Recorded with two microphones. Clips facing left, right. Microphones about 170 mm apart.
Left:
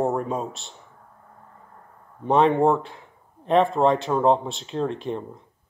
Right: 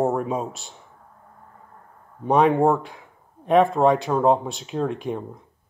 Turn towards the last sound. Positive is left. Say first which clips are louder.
# right 1 dB
turn(degrees=-5)  # may be behind; listen again after turning